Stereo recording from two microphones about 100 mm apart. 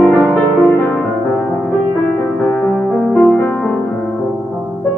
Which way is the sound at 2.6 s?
10° left (ahead or behind).